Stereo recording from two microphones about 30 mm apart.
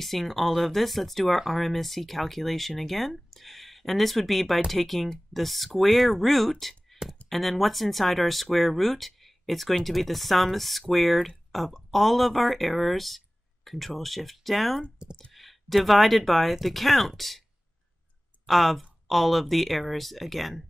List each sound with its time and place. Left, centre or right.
0.0 s speech: centre
15.0 s speech: right
15.3 s speech: centre
18.5 s speech: centre